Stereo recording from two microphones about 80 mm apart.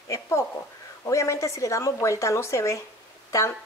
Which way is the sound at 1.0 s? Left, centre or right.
Left.